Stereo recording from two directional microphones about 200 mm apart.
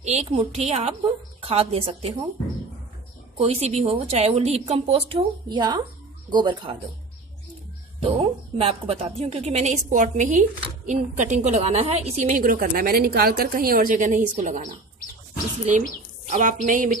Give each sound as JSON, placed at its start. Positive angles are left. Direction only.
{"t": 0.0, "sound": "a woman's voice", "side_deg": -35}
{"t": 3.3, "sound": "a woman's voice", "side_deg": -30}
{"t": 8.0, "sound": "a woman's voice", "side_deg": -25}
{"t": 16.3, "sound": "a woman's voice", "side_deg": -35}